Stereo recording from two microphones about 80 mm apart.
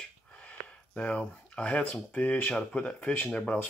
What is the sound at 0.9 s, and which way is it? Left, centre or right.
Speech, centre.